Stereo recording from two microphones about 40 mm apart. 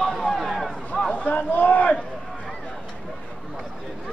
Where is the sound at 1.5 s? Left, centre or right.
Left.